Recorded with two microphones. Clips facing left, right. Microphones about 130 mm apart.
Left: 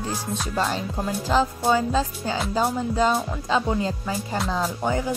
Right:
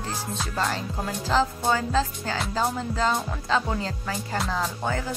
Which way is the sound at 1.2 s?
15° left (ahead or behind).